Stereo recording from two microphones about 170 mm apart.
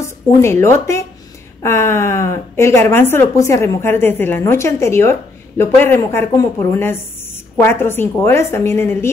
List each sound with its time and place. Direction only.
0.0 s a woman's voice: 15° left (ahead or behind)